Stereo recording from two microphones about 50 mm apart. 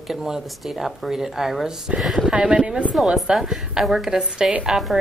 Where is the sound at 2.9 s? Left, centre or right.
Centre.